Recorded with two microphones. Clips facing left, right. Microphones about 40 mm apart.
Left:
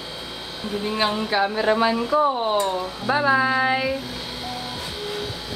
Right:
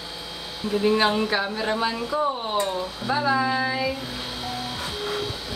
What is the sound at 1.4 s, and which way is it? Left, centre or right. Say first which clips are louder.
Speech: left 5 dB; centre.